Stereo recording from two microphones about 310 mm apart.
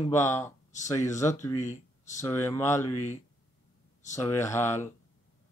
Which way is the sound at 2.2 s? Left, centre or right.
Centre.